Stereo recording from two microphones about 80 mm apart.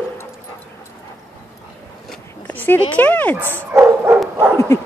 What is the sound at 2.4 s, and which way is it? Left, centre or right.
Speech, left.